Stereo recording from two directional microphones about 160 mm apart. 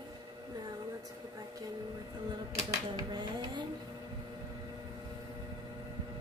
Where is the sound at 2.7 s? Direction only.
25° right (ahead or behind).